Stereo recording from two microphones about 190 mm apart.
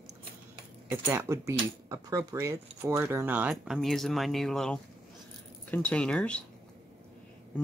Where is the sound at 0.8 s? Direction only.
15° right (ahead or behind); by 6.4 s 5° left (ahead or behind).